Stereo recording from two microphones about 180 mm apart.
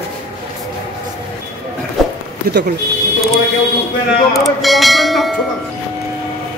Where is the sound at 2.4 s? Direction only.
60° right (ahead or behind).